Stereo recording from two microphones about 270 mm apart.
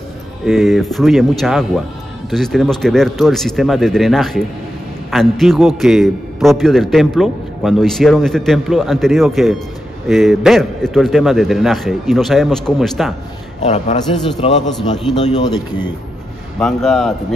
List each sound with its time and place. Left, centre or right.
0.5 s a man's voice: centre
13.6 s a man's voice: left
16.5 s a man's voice: centre